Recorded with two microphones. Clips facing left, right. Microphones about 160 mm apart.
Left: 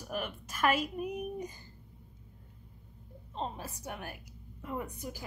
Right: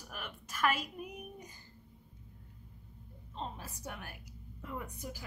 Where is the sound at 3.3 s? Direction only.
30° left (ahead or behind).